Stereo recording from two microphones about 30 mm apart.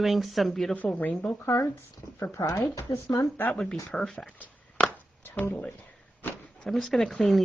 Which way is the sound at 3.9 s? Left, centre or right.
Centre.